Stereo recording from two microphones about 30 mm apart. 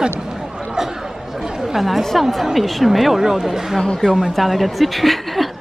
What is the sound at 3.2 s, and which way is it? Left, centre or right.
Speech, centre.